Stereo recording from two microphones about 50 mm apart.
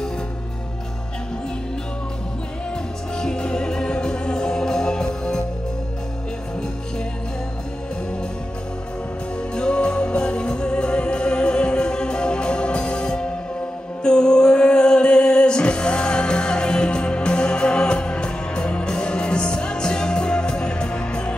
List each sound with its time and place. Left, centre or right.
3.2 s music: centre
9.6 s music: centre